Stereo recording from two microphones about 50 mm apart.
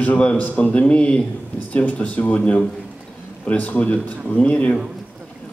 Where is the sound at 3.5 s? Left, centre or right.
Left.